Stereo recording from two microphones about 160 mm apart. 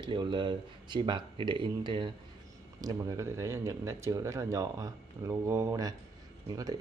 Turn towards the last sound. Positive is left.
turn(degrees=-25)  # may be behind; listen again after turning